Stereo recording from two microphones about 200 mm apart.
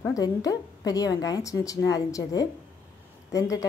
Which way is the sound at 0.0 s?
15° left (ahead or behind).